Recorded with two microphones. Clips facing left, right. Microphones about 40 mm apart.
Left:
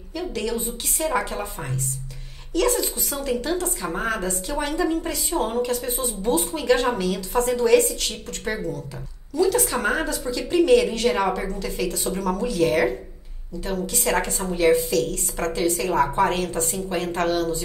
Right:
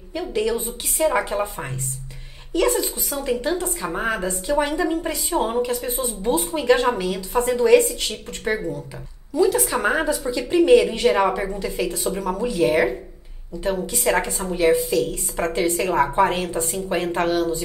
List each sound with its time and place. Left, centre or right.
0.1 s a woman's voice: centre
3.2 s a woman's voice: right
3.6 s a woman's voice: centre
13.6 s a woman's voice: right
14.3 s a woman's voice: centre